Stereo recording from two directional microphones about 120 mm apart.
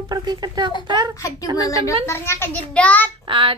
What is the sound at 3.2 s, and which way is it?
Child singing, 45° right (ahead or behind).